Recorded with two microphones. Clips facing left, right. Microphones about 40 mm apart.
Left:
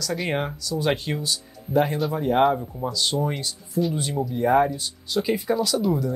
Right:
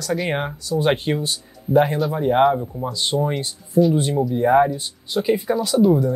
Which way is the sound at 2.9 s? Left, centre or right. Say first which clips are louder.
Right 3 dB; right.